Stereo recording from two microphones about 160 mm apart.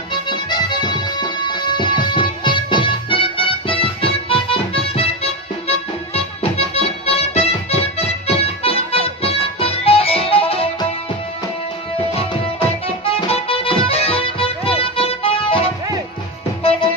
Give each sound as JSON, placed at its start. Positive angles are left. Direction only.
{"t": 0.3, "sound": "music", "side_deg": 30}
{"t": 12.1, "sound": "music", "side_deg": 35}